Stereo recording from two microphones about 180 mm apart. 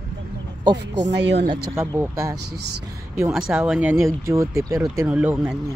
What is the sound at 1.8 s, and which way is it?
Speech, 15° right (ahead or behind).